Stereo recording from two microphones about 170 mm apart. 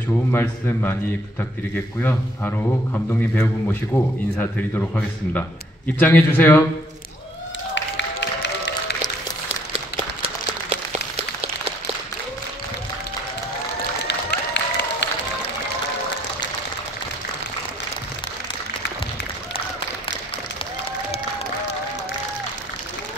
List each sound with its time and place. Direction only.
0.3 s speech: 15° left (ahead or behind)
2.0 s speech: 10° left (ahead or behind)
7.7 s music: 90° left
9.7 s a sound: 35° right (ahead or behind)
14.0 s applause: 80° left